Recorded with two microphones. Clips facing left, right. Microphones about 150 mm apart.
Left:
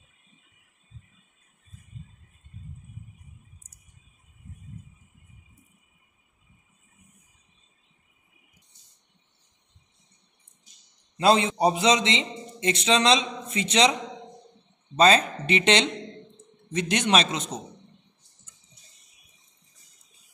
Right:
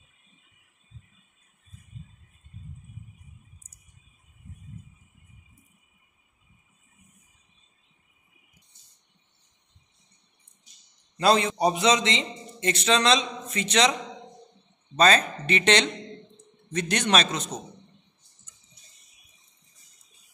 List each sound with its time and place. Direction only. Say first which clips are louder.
11.1 s a man's voice: left 1 dB; 25° left (ahead or behind)
15.0 s a man's voice: left 2 dB; 25° left (ahead or behind)